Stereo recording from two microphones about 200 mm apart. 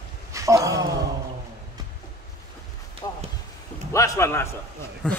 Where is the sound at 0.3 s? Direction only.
15° right (ahead or behind).